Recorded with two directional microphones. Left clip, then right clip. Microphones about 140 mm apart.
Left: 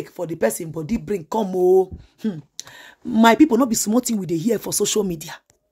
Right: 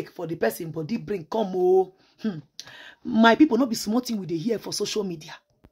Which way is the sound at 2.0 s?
20° left (ahead or behind).